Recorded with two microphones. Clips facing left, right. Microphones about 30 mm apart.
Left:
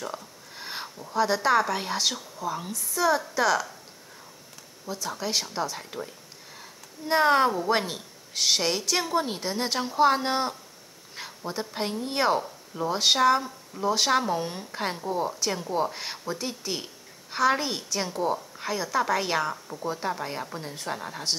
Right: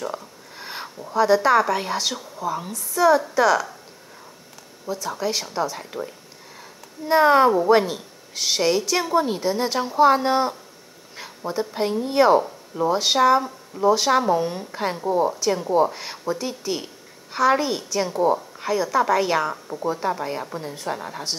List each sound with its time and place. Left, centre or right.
0.0 s a sound: centre
0.8 s a woman's voice: centre
4.8 s a woman's voice: centre
19.5 s a woman's voice: centre
19.9 s a woman's voice: centre